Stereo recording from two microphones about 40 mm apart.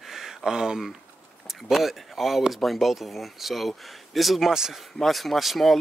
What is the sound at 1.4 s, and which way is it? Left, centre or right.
Speech, centre.